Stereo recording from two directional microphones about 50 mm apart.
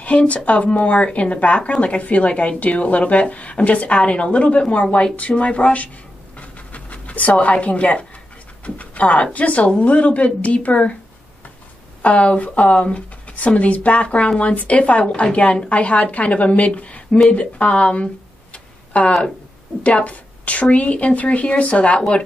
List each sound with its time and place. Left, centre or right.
0.0 s speech: left
6.3 s pant: left
8.6 s speech: left
12.0 s speech: left